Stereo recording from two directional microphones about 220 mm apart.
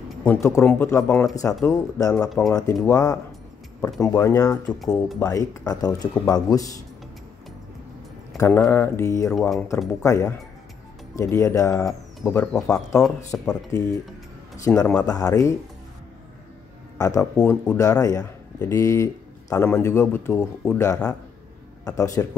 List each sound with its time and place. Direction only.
0.2 s speech: 10° left (ahead or behind)
2.2 s speech: centre (ahead or behind)
2.5 s speech: 15° left (ahead or behind)
5.0 s speech: centre (ahead or behind)
5.3 s speech: 15° left (ahead or behind)
8.4 s speech: 10° left (ahead or behind)
9.3 s speech: 5° left (ahead or behind)
11.8 s speech: 5° left (ahead or behind)
14.6 s speech: 10° left (ahead or behind)
17.0 s speech: 15° left (ahead or behind)